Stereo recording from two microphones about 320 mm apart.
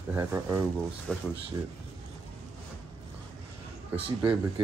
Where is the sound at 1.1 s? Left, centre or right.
Centre.